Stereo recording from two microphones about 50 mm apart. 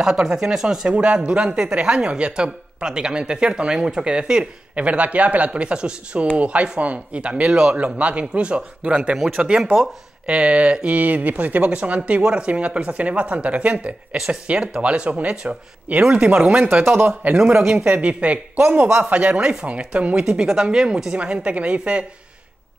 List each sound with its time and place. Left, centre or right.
0.0 s speech: centre
0.8 s speech: right
9.2 s speech: centre; by 13.9 s right
14.1 s speech: centre
14.8 s speech: right
16.8 s a man's voice: right
17.1 s speech: right
20.2 s speech: centre